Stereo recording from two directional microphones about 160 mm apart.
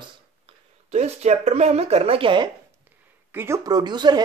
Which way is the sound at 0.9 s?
45° right (ahead or behind).